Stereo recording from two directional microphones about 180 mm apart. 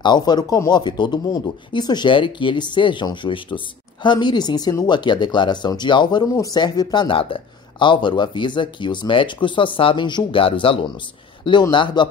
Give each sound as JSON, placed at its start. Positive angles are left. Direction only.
{"t": 0.0, "sound": "speech", "side_deg": 25}